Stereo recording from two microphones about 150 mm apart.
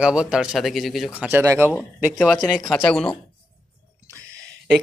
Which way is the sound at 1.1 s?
15° right (ahead or behind).